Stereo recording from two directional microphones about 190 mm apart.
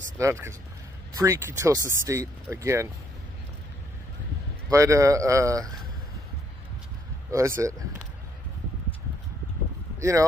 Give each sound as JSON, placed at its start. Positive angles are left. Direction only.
{"t": 0.2, "sound": "speech", "side_deg": -15}
{"t": 4.6, "sound": "speech", "side_deg": -15}
{"t": 7.2, "sound": "speech", "side_deg": -15}
{"t": 9.9, "sound": "speech", "side_deg": -15}